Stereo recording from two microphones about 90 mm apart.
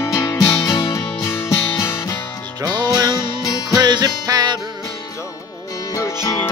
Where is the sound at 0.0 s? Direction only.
35° left (ahead or behind).